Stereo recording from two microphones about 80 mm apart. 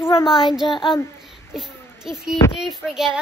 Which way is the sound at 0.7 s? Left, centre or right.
Left.